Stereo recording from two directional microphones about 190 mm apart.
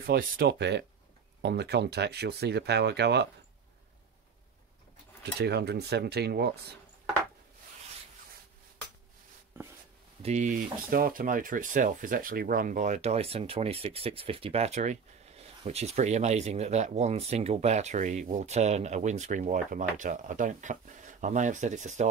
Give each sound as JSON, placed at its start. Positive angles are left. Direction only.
{"t": 0.0, "sound": "speech", "side_deg": -50}
{"t": 5.2, "sound": "speech", "side_deg": -60}
{"t": 10.2, "sound": "speech", "side_deg": -40}